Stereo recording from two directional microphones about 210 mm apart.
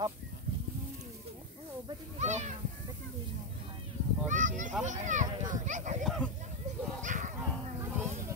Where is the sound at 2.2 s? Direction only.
35° right (ahead or behind).